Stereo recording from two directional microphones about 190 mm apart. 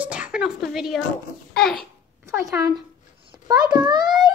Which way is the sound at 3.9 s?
20° right (ahead or behind).